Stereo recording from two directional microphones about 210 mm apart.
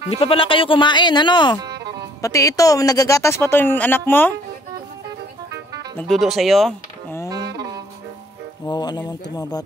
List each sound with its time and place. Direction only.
0.1 s speech: 25° left (ahead or behind); by 4.4 s 10° left (ahead or behind)
5.9 s speech: centre (ahead or behind)
7.2 s music: 15° right (ahead or behind)
8.6 s speech: 20° left (ahead or behind)